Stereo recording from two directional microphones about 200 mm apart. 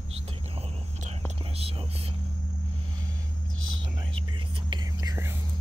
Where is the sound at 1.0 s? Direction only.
30° right (ahead or behind).